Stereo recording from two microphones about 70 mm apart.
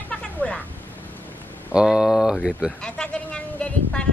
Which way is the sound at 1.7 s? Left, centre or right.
Centre.